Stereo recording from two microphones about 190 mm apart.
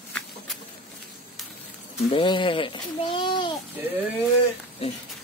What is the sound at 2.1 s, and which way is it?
A child's voice, 25° left (ahead or behind).